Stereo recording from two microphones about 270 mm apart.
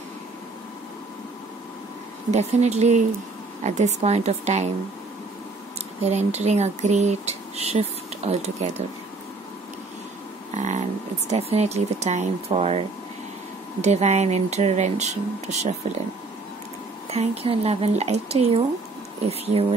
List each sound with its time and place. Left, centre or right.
2.3 s speech: right
6.0 s speech: right
10.5 s speech: right
17.1 s speech: right